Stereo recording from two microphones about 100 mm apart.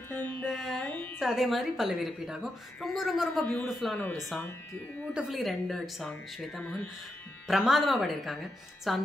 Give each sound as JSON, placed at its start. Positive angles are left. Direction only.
{"t": 0.1, "sound": "music", "side_deg": 20}
{"t": 0.5, "sound": "music", "side_deg": 5}
{"t": 1.2, "sound": "a woman's voice", "side_deg": -5}